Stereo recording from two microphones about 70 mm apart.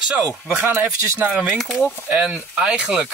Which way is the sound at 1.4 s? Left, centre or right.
Centre.